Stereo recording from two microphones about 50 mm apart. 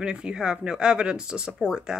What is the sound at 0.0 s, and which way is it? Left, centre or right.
Speech, centre.